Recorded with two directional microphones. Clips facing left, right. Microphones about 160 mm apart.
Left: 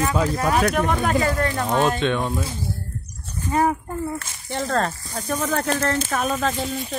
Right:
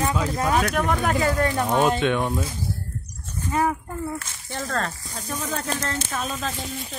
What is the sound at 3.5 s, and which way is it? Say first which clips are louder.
Speech: left 3 dB; 35° left (ahead or behind).